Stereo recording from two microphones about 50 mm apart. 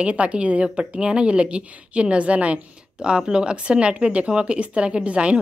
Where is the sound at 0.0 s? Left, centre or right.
Right.